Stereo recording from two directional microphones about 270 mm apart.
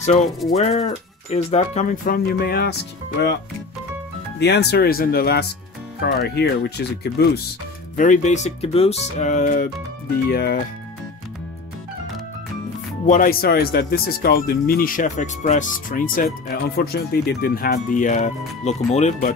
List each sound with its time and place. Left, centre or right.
0.0 s music: left
0.5 s speech: left
4.4 s speech: left
13.0 s speech: left